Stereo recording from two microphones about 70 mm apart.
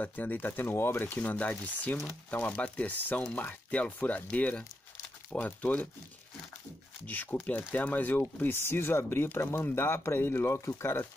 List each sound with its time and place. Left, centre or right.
0.0 s speech: left
7.1 s speech: left